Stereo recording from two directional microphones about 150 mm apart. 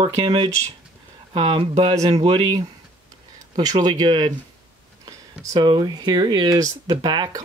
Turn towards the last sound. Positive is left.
turn(degrees=-30)  # may be behind; listen again after turning